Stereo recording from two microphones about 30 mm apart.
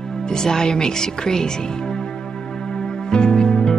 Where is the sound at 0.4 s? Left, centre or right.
Left.